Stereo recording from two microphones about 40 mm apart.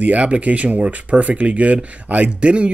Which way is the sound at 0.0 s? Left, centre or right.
Right.